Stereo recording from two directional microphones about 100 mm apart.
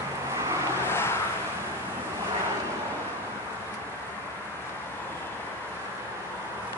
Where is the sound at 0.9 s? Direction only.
25° left (ahead or behind).